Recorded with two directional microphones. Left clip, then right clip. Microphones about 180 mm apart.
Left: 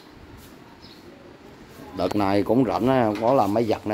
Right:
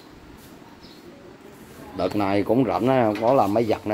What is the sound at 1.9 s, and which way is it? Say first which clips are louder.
Speech: even; 20° left (ahead or behind).